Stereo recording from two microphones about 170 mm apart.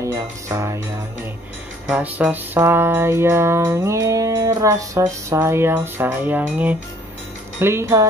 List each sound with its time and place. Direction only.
0.0 s music: 20° right (ahead or behind)
1.9 s music: 5° right (ahead or behind)